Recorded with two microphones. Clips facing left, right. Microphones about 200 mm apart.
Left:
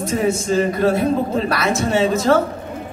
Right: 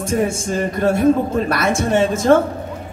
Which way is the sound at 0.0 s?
50° right (ahead or behind).